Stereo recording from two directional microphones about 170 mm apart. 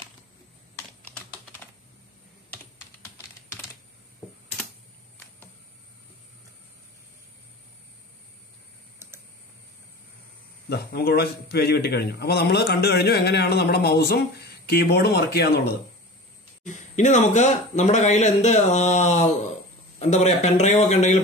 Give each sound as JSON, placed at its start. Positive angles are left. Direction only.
{"t": 10.7, "sound": "a man's voice", "side_deg": 65}
{"t": 16.6, "sound": "speech", "side_deg": 45}